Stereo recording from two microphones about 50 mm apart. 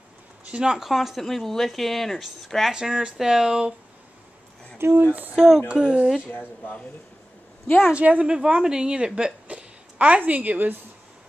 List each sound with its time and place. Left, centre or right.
0.5 s speech: centre
0.7 s speech: centre
2.7 s speech: centre
4.7 s a sound: right
5.0 s a sound: right
5.3 s speech: centre
5.7 s speech: centre
7.9 s speech: right
9.9 s speech: right